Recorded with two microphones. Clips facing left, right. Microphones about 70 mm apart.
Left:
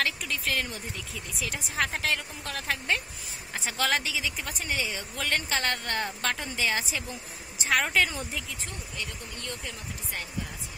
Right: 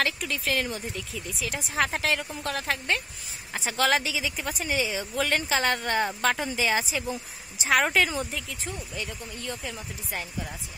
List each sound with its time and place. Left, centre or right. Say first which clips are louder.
0.0 s a woman's voice: right 2 dB; centre